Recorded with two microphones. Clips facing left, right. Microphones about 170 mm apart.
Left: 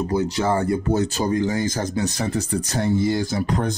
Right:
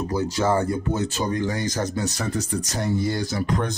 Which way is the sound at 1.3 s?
25° left (ahead or behind).